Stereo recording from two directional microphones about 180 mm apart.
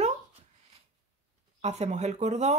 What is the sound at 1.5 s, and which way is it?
Speech, 40° right (ahead or behind).